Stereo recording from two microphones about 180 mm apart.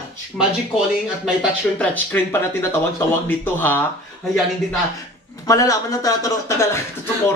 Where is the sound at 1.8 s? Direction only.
10° left (ahead or behind).